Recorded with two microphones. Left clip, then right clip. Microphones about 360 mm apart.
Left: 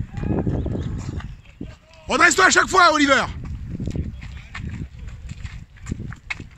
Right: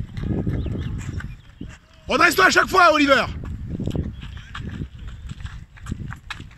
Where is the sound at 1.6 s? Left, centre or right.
Left.